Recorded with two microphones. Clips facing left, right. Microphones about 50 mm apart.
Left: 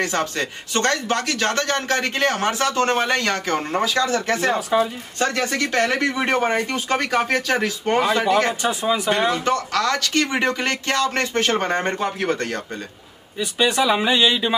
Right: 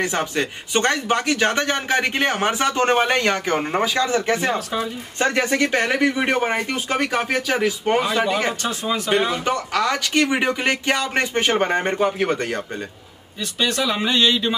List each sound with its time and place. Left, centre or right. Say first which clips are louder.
0.0 s a man's voice: even; centre
4.6 s speech: left 5 dB; centre
5.2 s a man's voice: right 2 dB; right
8.6 s speech: left 3 dB; centre
9.3 s a man's voice: left 1 dB; centre
13.4 s speech: left 3 dB; centre